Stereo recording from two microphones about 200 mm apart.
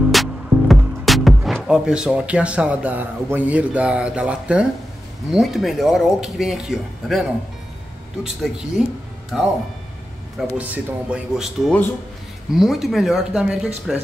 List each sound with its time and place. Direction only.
0.1 s speech: centre (ahead or behind)